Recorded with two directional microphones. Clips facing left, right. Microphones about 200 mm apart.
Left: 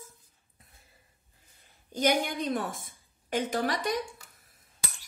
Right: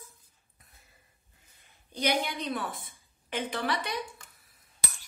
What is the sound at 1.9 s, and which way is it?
A woman's voice, 45° left (ahead or behind).